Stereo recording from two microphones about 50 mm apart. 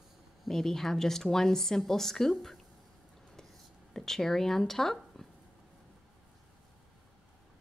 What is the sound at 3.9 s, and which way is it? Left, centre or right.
Speech, centre.